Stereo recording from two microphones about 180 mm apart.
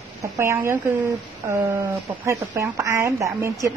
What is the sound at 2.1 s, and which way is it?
Speech, 10° right (ahead or behind).